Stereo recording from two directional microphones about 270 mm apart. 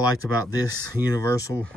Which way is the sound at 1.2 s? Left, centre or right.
Centre.